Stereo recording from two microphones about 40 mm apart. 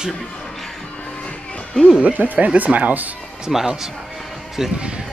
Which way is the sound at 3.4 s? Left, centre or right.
Centre.